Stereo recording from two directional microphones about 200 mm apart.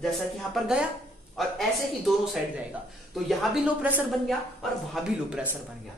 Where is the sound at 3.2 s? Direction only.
5° right (ahead or behind).